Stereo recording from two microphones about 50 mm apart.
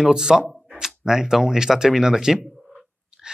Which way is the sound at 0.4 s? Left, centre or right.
Centre.